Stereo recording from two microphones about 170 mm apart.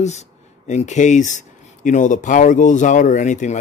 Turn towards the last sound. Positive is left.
turn(degrees=45)  # may be behind; listen again after turning